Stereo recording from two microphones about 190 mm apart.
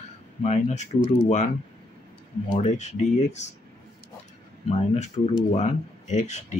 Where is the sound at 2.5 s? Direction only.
40° left (ahead or behind).